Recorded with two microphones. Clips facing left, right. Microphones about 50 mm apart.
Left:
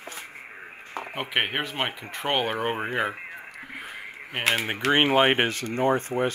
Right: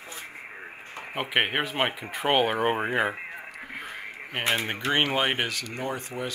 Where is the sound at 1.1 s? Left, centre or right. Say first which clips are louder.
Right 2 dB; centre.